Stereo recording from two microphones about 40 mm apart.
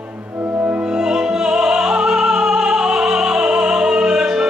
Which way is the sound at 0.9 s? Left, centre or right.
Centre.